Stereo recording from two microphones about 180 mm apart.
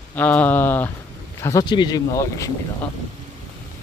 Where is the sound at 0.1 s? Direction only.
10° left (ahead or behind).